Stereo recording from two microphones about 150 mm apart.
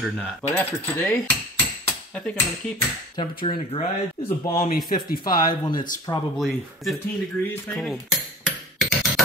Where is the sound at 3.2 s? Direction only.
30° left (ahead or behind).